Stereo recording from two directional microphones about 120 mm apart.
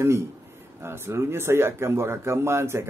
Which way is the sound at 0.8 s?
20° right (ahead or behind).